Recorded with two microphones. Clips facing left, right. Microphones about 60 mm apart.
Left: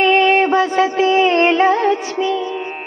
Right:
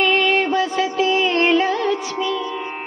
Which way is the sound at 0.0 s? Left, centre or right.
Left.